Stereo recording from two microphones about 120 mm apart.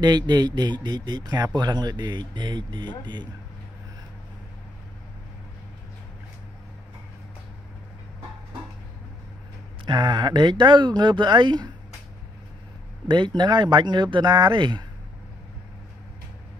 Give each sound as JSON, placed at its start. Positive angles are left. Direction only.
{"t": 0.0, "sound": "speech", "side_deg": -35}
{"t": 9.8, "sound": "speech", "side_deg": -40}
{"t": 13.1, "sound": "speech", "side_deg": -40}